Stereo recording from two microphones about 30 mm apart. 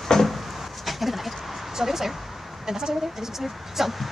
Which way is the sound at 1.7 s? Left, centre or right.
Centre.